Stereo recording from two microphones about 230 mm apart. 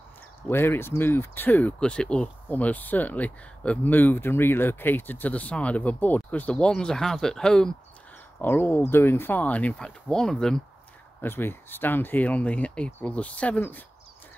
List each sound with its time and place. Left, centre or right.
0.4 s speech: centre